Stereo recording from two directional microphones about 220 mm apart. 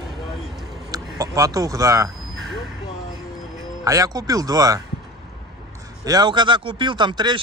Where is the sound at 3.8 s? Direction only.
15° right (ahead or behind).